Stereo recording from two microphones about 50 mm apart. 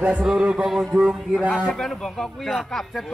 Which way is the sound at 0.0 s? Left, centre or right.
Right.